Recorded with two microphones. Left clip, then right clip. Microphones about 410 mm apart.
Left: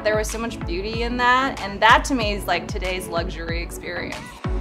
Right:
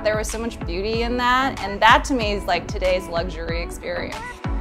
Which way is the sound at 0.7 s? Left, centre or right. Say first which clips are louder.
Right 2 dB; right.